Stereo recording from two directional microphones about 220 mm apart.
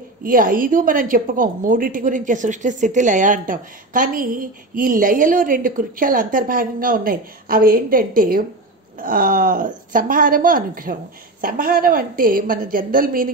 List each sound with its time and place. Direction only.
0.2 s a woman's voice: 40° right (ahead or behind)